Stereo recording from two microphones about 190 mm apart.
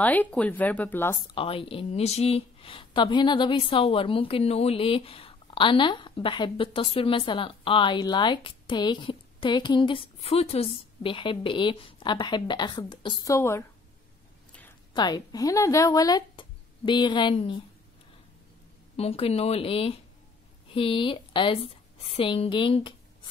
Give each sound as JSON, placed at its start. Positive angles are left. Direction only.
{"t": 0.0, "sound": "speech", "side_deg": 10}
{"t": 1.3, "sound": "speech", "side_deg": 30}
{"t": 15.0, "sound": "speech", "side_deg": 20}
{"t": 18.9, "sound": "speech", "side_deg": 30}